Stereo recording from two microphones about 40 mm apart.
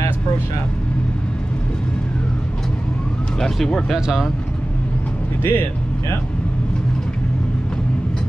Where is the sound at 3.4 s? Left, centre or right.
Centre.